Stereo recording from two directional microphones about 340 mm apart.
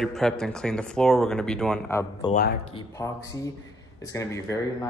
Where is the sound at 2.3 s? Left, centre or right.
Left.